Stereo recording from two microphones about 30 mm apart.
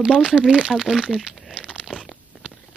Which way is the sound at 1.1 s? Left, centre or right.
Centre.